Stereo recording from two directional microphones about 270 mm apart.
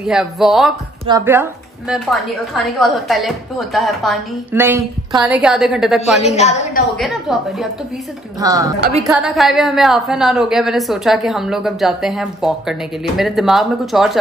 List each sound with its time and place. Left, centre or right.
0.0 s a woman's voice: centre
1.0 s a woman's voice: centre
6.3 s a woman's voice: left
7.0 s a woman's voice: centre
8.4 s a woman's voice: centre